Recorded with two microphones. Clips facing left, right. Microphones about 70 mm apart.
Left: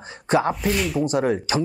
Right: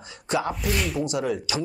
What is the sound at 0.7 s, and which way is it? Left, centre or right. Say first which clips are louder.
Speech: left 4 dB; centre.